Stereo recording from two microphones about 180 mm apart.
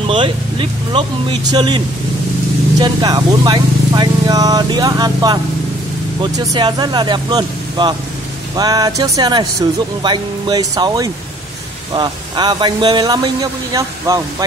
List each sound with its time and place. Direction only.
0.0 s speech: 25° right (ahead or behind)
2.8 s speech: 25° right (ahead or behind)